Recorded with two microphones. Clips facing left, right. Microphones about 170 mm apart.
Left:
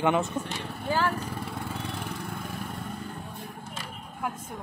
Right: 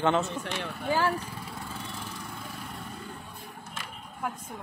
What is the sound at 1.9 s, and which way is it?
Lawn mower, 60° left (ahead or behind).